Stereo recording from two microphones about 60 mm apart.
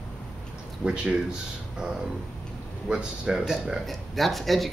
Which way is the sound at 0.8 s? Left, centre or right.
Centre.